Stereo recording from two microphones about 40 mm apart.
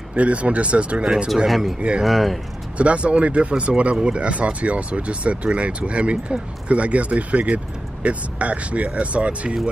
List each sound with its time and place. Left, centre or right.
0.1 s speech: right
1.0 s speech: centre
1.5 s speech: centre
2.8 s speech: right